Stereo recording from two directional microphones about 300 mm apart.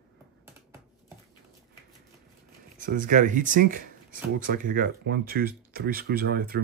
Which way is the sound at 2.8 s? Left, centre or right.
Right.